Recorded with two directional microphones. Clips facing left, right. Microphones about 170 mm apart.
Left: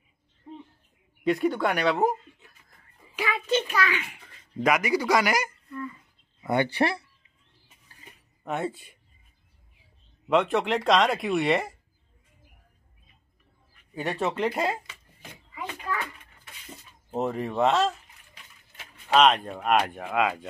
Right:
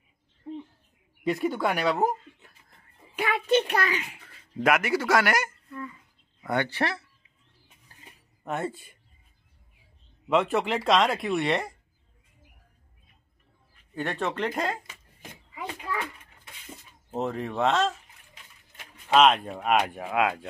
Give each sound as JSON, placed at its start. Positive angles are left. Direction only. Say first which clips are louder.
{"t": 1.2, "sound": "speech", "louder": "left 2 dB", "side_deg": -5}
{"t": 3.2, "sound": "a child's voice", "louder": "right 3 dB", "side_deg": -60}
{"t": 3.9, "sound": "a child's voice", "louder": "even", "side_deg": -35}
{"t": 4.3, "sound": "speech", "louder": "even", "side_deg": -5}
{"t": 6.4, "sound": "speech", "louder": "left 3 dB", "side_deg": 15}
{"t": 8.5, "sound": "speech", "louder": "left 1 dB", "side_deg": 0}
{"t": 10.2, "sound": "speech", "louder": "left 1 dB", "side_deg": 0}
{"t": 13.9, "sound": "speech", "louder": "left 2 dB", "side_deg": 10}
{"t": 17.1, "sound": "speech", "louder": "left 2 dB", "side_deg": 0}
{"t": 19.1, "sound": "speech", "louder": "even", "side_deg": 0}